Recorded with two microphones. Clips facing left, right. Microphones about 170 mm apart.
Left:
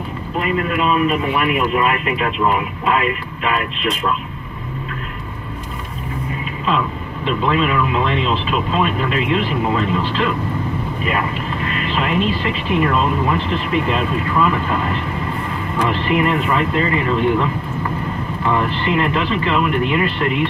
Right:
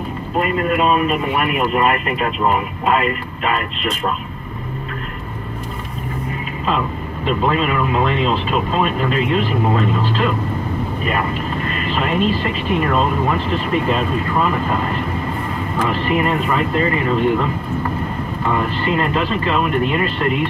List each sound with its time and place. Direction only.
0.4 s a man's voice: 45° right (ahead or behind)
7.2 s a man's voice: 45° right (ahead or behind)
11.6 s a man's voice: 45° right (ahead or behind)
18.5 s speech: 40° right (ahead or behind)